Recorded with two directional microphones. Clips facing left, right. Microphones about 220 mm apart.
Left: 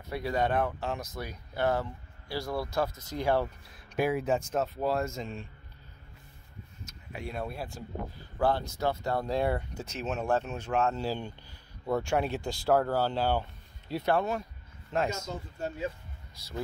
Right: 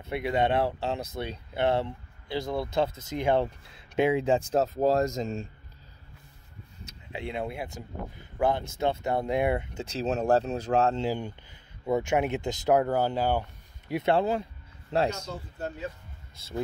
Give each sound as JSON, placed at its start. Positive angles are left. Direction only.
{"t": 0.1, "sound": "speech", "side_deg": -25}
{"t": 7.1, "sound": "speech", "side_deg": -25}
{"t": 11.0, "sound": "speech", "side_deg": -15}